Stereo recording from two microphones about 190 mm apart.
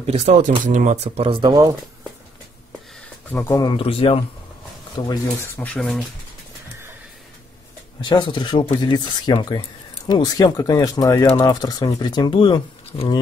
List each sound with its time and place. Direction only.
0.0 s speech: 35° right (ahead or behind)
3.3 s speech: 15° left (ahead or behind)
8.1 s speech: 25° left (ahead or behind)